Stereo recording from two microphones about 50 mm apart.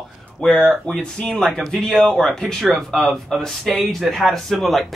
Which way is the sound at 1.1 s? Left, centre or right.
Left.